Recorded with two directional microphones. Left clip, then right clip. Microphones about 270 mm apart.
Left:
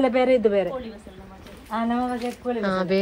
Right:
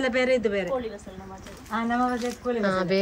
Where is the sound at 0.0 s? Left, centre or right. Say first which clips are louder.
Left 4 dB; centre.